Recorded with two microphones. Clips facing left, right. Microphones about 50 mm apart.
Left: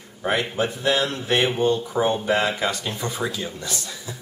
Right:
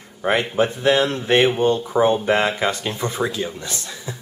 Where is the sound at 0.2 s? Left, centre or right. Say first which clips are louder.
Right 4 dB; centre.